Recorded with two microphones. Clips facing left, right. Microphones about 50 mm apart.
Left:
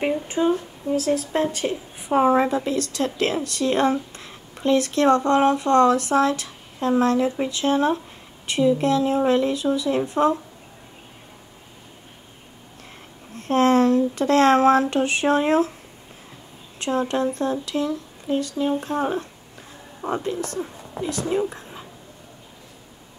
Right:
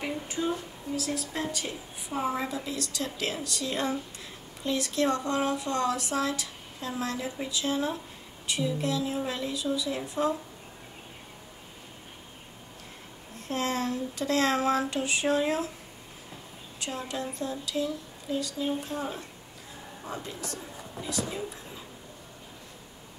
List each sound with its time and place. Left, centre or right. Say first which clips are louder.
0.3 s a woman's voice: left 9 dB; left
13.4 s a woman's voice: left 13 dB; left
16.8 s a woman's voice: left 12 dB; left